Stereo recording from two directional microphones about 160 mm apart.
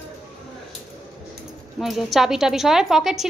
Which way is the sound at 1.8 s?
Centre (ahead or behind).